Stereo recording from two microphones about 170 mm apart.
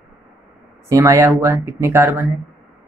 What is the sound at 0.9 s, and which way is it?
Speech, 15° right (ahead or behind).